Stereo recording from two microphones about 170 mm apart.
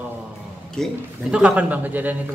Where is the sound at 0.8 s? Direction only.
5° left (ahead or behind).